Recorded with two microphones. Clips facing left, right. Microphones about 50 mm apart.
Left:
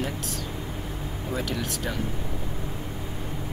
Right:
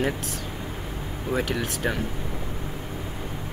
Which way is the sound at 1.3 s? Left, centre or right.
Right.